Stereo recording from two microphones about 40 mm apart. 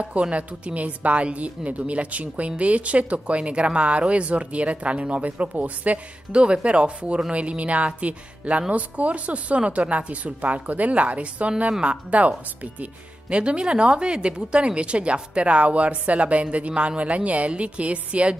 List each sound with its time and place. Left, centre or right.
0.3 s speech: right
6.4 s speech: right